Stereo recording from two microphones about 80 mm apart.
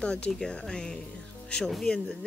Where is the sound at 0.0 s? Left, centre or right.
Centre.